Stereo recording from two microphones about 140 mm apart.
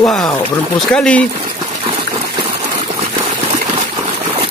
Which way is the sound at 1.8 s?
45° right (ahead or behind).